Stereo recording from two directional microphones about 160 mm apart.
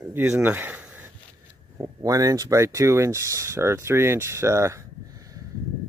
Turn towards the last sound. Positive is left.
turn(degrees=-20)  # may be behind; listen again after turning